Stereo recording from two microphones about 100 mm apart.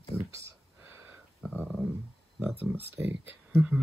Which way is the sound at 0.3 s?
30° right (ahead or behind).